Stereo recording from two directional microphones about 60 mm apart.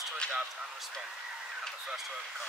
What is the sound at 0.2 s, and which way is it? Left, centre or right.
Speech, centre.